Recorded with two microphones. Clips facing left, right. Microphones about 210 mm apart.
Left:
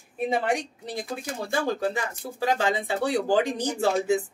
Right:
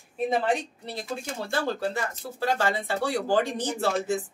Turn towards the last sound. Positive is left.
turn(degrees=15)  # may be behind; listen again after turning